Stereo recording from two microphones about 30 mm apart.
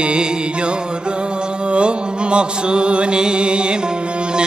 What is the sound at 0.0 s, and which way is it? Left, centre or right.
Music, right.